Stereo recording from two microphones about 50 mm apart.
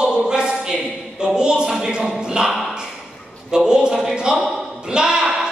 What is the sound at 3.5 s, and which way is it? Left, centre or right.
Speech, centre.